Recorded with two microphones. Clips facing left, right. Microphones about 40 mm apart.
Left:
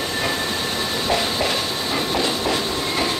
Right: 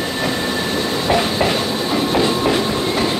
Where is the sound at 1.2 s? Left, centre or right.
Right.